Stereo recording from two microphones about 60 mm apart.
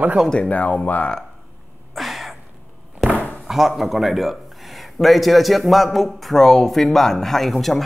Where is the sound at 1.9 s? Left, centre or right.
Centre.